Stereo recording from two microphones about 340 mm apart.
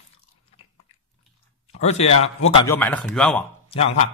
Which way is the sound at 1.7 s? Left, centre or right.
Centre.